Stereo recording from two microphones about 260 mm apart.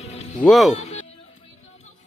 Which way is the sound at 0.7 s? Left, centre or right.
Left.